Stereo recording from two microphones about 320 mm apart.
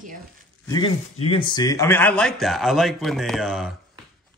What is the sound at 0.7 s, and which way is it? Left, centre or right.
A man's voice, centre.